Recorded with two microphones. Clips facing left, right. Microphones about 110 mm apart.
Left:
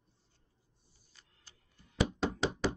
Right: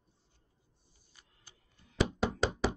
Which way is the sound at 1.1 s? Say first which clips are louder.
Right 1 dB; 10° right (ahead or behind).